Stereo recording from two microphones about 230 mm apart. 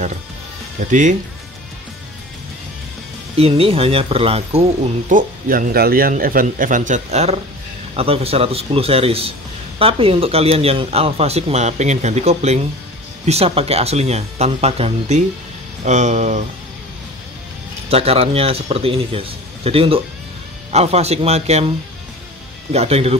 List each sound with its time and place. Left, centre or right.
0.7 s a man's voice: right
3.3 s speech: right
5.1 s a man's voice: right
17.8 s speech: right